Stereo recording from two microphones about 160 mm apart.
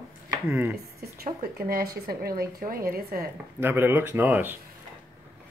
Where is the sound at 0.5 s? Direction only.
10° right (ahead or behind).